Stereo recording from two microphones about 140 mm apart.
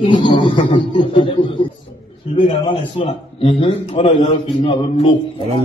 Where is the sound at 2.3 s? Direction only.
40° left (ahead or behind).